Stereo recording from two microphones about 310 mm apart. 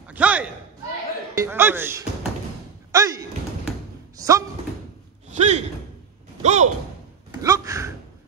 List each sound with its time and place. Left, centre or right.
0.1 s a sound: centre
1.3 s speech: centre
2.9 s thump: centre
4.2 s speech: centre
5.3 s speech: right
7.4 s gasp: centre